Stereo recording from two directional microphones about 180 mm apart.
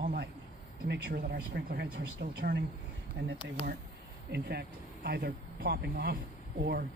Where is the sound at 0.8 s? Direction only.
65° right (ahead or behind).